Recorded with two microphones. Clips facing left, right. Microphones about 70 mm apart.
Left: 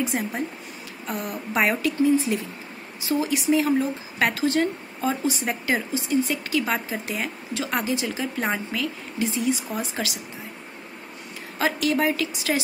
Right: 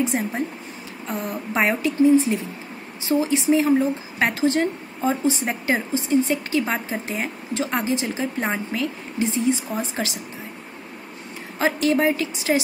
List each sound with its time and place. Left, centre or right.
0.0 s a woman's voice: right
11.5 s a woman's voice: right